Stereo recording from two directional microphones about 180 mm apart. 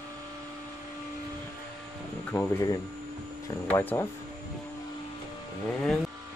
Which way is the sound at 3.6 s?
10° left (ahead or behind).